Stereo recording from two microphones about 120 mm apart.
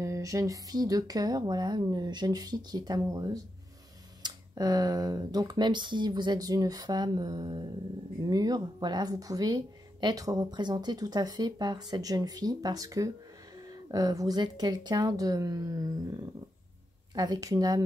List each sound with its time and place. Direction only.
0.0 s a woman's voice: 25° right (ahead or behind)